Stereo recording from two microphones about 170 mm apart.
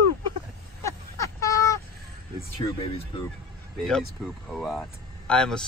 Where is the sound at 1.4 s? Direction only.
20° left (ahead or behind).